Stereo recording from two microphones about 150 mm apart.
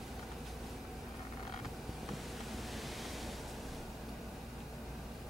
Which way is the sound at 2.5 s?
Centre (ahead or behind).